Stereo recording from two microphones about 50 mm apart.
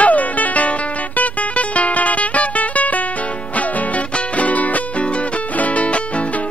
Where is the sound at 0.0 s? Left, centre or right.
Left.